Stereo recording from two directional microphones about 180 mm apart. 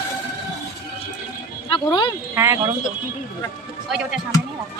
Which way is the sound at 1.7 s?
25° left (ahead or behind).